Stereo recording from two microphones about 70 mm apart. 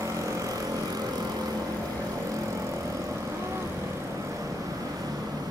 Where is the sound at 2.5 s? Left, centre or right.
Right.